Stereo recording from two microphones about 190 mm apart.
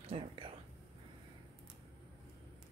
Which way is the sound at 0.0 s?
30° right (ahead or behind).